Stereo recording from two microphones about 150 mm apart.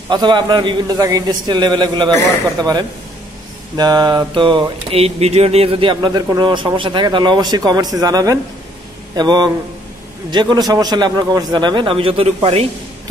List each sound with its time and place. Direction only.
0.1 s a man's voice: 30° right (ahead or behind)
3.7 s a sound: 25° right (ahead or behind)
9.1 s a man's voice: 30° right (ahead or behind)